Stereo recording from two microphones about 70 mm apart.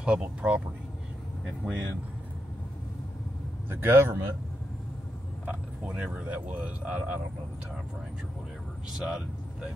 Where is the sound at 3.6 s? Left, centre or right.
Right.